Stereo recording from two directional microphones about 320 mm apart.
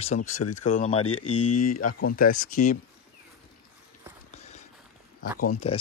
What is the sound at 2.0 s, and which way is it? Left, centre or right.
Speech, left.